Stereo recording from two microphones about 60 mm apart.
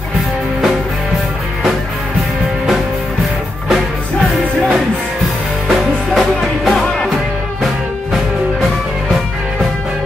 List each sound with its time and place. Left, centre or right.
5.7 s music: centre